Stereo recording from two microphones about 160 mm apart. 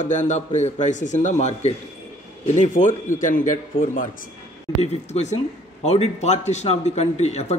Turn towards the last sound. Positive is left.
turn(degrees=45)  # may be behind; listen again after turning